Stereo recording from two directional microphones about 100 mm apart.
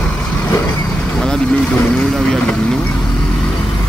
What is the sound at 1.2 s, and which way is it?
Speech, 5° left (ahead or behind).